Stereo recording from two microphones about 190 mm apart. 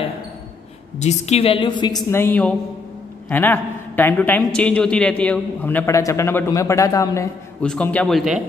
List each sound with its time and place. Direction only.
0.9 s a woman's voice: 35° left (ahead or behind); by 7.2 s 15° left (ahead or behind)
7.6 s a man's voice: 5° left (ahead or behind)